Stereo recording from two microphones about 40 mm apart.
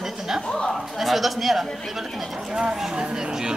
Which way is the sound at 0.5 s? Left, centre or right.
Centre.